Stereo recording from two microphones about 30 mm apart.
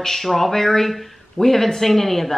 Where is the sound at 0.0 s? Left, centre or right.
Centre.